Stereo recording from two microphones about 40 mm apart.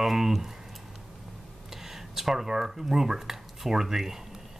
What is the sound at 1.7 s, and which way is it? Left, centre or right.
Speech, centre.